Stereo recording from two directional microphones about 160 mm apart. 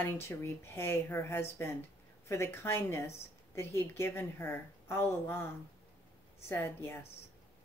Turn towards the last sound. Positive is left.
turn(degrees=15)  # may be behind; listen again after turning